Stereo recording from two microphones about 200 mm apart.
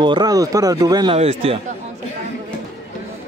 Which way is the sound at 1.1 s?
30° right (ahead or behind).